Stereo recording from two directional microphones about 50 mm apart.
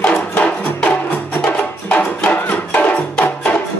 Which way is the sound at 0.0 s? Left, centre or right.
Left.